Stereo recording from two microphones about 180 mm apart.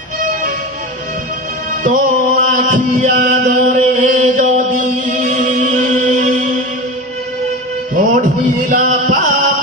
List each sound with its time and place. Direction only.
1.8 s mantra: 50° right (ahead or behind)
5.0 s chant: 45° right (ahead or behind)
7.9 s music: 50° right (ahead or behind)